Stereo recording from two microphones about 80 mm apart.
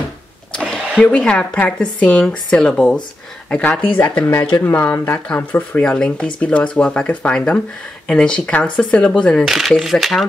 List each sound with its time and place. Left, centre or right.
0.5 s a sound: centre
1.1 s speech: centre
4.6 s speech: left
5.3 s speech: centre
9.4 s speech: centre